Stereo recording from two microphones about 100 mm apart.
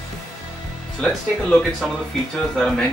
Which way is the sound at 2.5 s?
5° left (ahead or behind).